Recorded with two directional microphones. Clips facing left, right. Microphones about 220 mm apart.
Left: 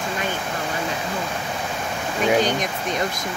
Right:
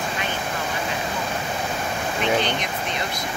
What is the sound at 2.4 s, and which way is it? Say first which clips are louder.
Speech: left 3 dB; 45° left (ahead or behind).